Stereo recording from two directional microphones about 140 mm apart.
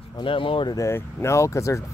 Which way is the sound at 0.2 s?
40° left (ahead or behind).